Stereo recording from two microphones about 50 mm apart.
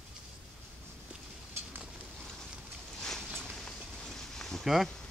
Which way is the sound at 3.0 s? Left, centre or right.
Centre.